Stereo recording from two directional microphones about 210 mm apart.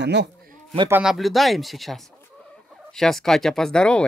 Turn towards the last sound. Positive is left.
turn(degrees=5)  # may be behind; listen again after turning